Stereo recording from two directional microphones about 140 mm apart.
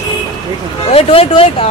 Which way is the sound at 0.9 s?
45° left (ahead or behind).